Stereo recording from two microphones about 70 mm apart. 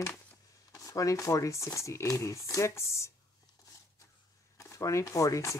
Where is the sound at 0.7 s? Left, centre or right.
Left.